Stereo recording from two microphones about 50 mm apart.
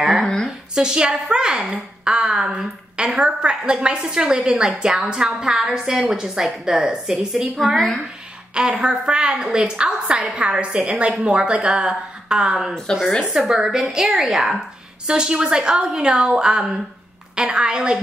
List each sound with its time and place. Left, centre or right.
0.2 s a sound: centre
0.7 s a child's voice: centre
8.5 s a child's voice: centre
12.9 s speech: centre
13.3 s a child's voice: centre
15.0 s a child's voice: centre